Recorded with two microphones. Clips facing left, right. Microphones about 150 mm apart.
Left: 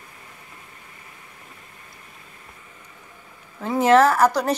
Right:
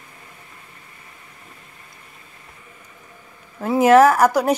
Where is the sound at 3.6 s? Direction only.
10° right (ahead or behind).